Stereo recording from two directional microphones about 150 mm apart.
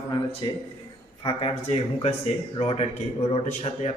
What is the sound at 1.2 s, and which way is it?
Speech, 35° left (ahead or behind).